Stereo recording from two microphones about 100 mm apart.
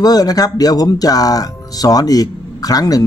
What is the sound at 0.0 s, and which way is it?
Speech, 40° left (ahead or behind).